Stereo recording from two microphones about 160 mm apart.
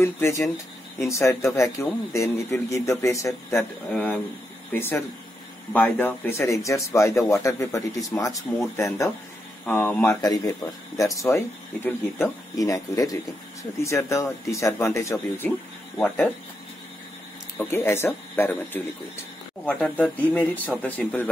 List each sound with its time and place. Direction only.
0.0 s speech: 15° left (ahead or behind)
17.6 s speech: 15° left (ahead or behind)